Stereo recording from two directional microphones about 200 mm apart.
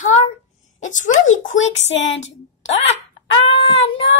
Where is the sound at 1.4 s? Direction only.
70° left (ahead or behind).